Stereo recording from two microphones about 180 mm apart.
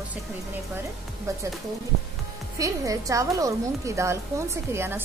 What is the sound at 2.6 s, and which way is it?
A woman's voice, 20° right (ahead or behind).